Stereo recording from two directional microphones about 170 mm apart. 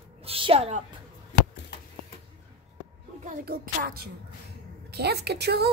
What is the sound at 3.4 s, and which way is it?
Speech, 60° right (ahead or behind).